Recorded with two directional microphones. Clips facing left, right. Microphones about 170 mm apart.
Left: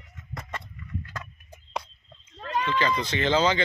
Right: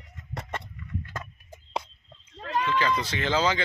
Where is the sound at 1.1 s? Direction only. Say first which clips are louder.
Right 1 dB; 25° right (ahead or behind).